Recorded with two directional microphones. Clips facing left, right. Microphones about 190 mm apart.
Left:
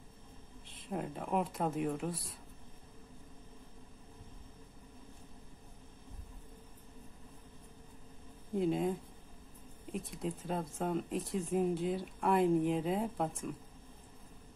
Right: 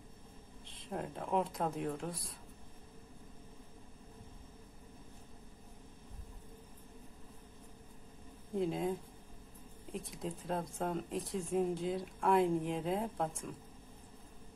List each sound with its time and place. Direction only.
0.7 s speech: centre (ahead or behind)
8.5 s speech: centre (ahead or behind)
9.9 s speech: centre (ahead or behind)